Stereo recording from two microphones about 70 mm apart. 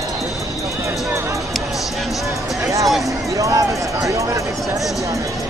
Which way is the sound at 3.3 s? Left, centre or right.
Right.